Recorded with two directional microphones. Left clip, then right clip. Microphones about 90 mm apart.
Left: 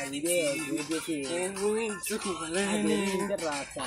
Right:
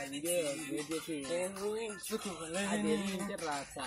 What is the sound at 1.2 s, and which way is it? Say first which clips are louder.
Music: left 4 dB; 20° right (ahead or behind).